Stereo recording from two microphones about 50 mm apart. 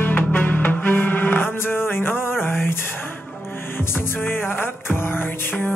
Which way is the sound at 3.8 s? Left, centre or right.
Left.